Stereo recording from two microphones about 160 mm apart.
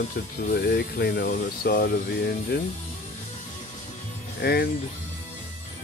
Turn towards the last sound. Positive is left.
turn(degrees=85)